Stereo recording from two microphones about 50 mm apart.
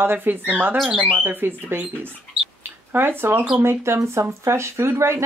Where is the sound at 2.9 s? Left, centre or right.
Right.